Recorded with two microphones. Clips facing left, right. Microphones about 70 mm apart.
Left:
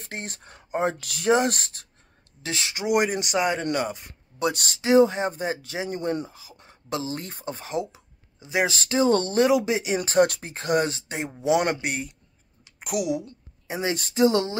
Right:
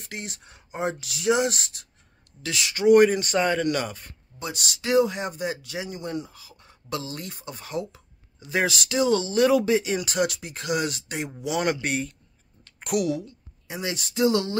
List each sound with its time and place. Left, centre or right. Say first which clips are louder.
0.0 s speech: left 1 dB; left
2.4 s speech: right 1 dB; left
2.7 s speech: right 7 dB; centre
4.4 s speech: left 8 dB; left
4.8 s speech: left 4 dB; left
5.9 s speech: left 7 dB; left
6.3 s speech: left 2 dB; left
7.7 s a sound: left 1 dB; centre
8.6 s speech: left 1 dB; left
9.5 s speech: right 1 dB; centre
9.9 s speech: left 5 dB; left
11.8 s speech: right 2 dB; centre
12.6 s a sound: right 2 dB; centre
13.7 s speech: left 4 dB; left